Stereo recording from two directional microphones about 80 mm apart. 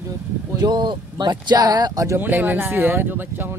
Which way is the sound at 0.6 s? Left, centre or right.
Right.